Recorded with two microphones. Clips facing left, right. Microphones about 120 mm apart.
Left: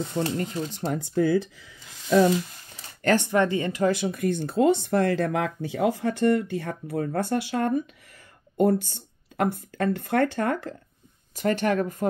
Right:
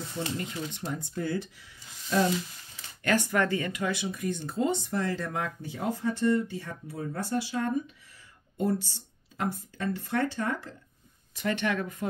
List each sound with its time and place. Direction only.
0.2 s speech: 40° left (ahead or behind)
0.9 s speech: 90° left
3.0 s speech: 35° left (ahead or behind)
3.3 s speech: 25° left (ahead or behind)
3.8 s speech: 45° left (ahead or behind)
11.3 s speech: 45° left (ahead or behind)